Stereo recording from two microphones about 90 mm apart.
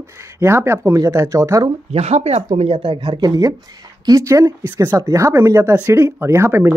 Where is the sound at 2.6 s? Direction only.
70° right (ahead or behind).